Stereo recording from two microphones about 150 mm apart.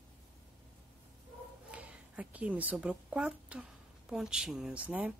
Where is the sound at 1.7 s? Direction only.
10° right (ahead or behind).